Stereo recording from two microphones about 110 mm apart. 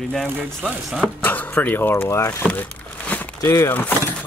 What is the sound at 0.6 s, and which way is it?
Chopping, centre (ahead or behind).